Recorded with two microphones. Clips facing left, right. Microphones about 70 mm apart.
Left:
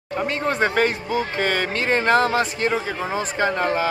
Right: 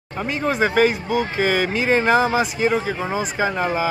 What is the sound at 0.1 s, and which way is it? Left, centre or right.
A man's voice, centre.